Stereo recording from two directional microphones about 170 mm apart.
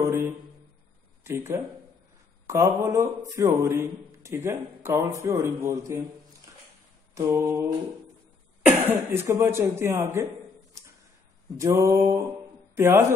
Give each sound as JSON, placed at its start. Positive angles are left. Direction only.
{"t": 0.0, "sound": "mantra", "side_deg": -15}
{"t": 1.2, "sound": "a man's voice", "side_deg": -15}
{"t": 7.2, "sound": "a man's voice", "side_deg": -15}
{"t": 8.6, "sound": "a man's voice", "side_deg": -10}
{"t": 11.5, "sound": "a man's voice", "side_deg": -15}